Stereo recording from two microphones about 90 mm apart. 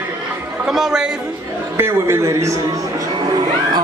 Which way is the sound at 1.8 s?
30° right (ahead or behind).